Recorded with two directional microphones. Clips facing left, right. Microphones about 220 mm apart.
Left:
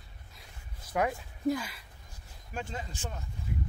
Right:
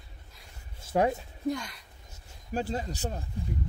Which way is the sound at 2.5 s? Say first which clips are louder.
Right 7 dB; 35° right (ahead or behind).